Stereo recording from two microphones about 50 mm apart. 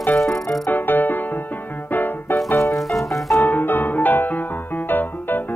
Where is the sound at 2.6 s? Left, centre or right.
Centre.